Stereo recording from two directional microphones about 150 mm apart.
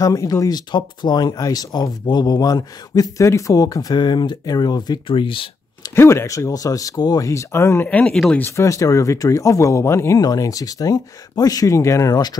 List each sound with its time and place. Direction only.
0.0 s speech: 25° left (ahead or behind)
5.9 s speech: 15° left (ahead or behind)
8.5 s speech: 20° left (ahead or behind)